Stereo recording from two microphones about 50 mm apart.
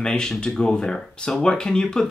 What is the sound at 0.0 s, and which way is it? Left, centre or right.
Speech, centre.